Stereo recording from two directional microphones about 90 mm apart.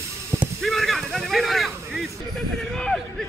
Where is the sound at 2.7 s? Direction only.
10° left (ahead or behind).